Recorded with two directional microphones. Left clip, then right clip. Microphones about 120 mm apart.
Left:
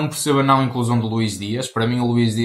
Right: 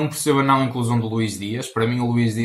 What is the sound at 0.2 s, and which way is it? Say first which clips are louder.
Speech: left 1 dB; 40° left (ahead or behind).